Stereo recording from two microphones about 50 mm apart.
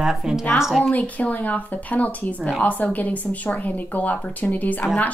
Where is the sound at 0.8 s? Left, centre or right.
Left.